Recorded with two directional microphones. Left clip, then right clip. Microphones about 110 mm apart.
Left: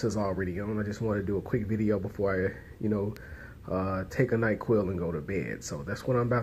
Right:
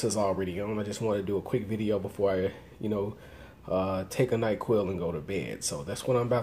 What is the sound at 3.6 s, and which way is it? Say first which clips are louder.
Speech: right 3 dB; 10° right (ahead or behind).